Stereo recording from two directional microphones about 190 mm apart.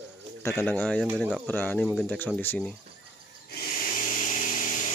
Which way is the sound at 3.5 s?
50° left (ahead or behind).